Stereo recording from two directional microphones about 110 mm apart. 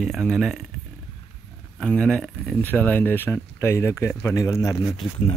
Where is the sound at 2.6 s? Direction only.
15° left (ahead or behind).